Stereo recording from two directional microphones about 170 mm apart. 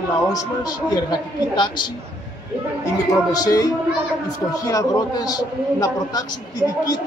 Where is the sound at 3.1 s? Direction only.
20° left (ahead or behind).